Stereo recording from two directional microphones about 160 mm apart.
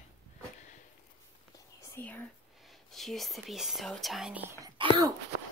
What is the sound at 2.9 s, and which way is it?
Speech, centre (ahead or behind).